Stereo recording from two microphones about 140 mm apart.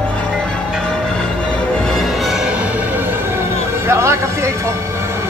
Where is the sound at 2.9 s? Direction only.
15° right (ahead or behind).